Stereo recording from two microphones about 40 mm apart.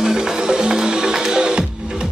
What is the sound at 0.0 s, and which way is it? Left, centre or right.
Music, centre.